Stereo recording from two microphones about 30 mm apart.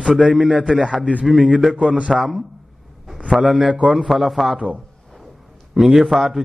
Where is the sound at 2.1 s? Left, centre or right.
Centre.